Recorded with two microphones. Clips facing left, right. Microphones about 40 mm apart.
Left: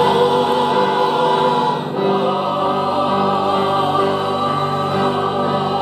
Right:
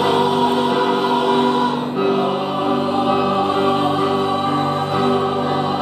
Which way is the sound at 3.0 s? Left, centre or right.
Centre.